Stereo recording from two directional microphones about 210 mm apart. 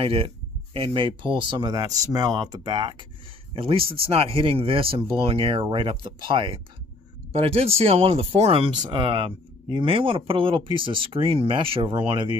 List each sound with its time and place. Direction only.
0.0 s speech: 25° right (ahead or behind)